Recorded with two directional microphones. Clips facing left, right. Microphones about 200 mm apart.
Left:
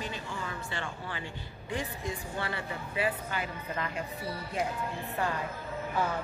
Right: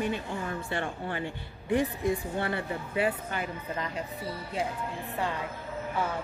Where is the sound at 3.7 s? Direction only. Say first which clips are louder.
Even; 25° right (ahead or behind).